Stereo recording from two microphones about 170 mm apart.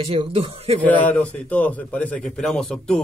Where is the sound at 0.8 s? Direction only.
10° left (ahead or behind).